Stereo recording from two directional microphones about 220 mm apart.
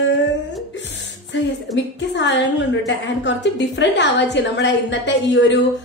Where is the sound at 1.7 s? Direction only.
55° left (ahead or behind).